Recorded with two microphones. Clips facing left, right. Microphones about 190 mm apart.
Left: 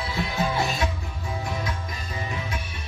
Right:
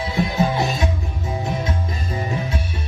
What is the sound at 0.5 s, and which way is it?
Music, 20° right (ahead or behind).